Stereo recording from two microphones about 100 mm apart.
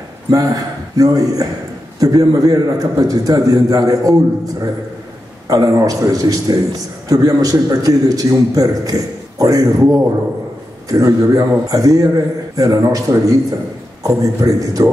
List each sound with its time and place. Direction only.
0.3 s a man's voice: 35° right (ahead or behind)